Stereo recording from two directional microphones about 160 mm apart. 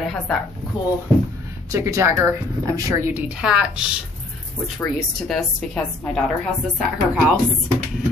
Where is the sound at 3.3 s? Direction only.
5° right (ahead or behind).